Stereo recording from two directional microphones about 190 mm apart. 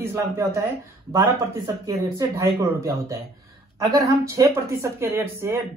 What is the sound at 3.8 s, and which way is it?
Speech, 20° right (ahead or behind).